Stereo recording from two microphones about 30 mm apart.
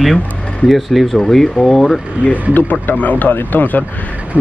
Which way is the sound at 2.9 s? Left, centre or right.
Left.